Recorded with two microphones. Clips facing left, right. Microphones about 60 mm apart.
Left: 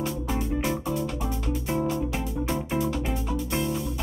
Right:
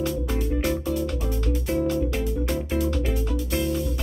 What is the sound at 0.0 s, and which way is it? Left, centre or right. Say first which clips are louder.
Music: right 2 dB; centre.